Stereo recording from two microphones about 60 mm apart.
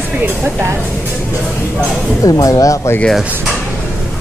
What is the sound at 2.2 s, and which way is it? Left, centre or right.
Speech, left.